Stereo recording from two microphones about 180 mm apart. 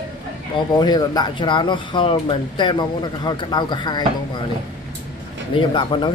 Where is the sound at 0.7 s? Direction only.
20° left (ahead or behind).